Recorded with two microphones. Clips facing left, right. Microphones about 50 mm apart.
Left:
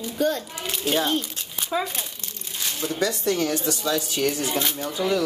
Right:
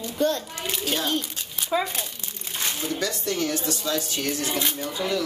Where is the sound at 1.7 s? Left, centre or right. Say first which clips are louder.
Right 1 dB; centre.